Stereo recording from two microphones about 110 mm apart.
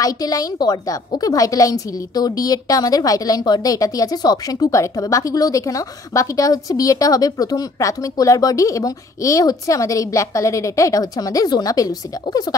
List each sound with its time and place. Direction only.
0.0 s a woman's voice: 35° left (ahead or behind)